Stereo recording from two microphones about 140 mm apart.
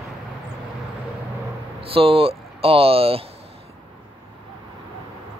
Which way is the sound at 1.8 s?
40° right (ahead or behind).